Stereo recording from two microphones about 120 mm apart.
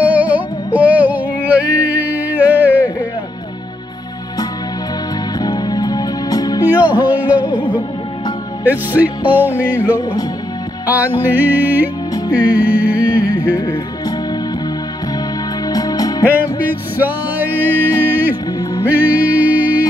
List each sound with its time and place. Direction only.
0.0 s music: 10° right (ahead or behind)
5.4 s music: 35° left (ahead or behind)
6.7 s music: 15° right (ahead or behind)
8.6 s music: 15° right (ahead or behind)
15.7 s music: 30° left (ahead or behind)
16.3 s music: 15° right (ahead or behind)